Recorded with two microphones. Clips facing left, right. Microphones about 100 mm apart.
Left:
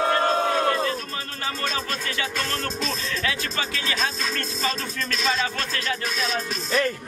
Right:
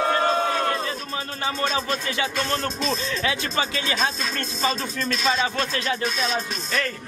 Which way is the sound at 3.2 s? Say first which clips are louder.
Right 3 dB; 25° right (ahead or behind).